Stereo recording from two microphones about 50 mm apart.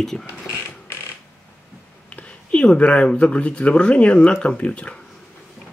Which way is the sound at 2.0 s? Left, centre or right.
Left.